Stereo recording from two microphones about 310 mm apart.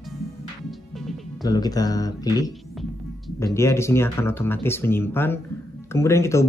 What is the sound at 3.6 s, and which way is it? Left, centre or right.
Speech, centre.